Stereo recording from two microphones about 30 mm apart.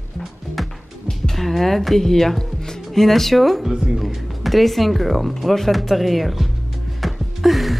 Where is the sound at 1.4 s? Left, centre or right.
Centre.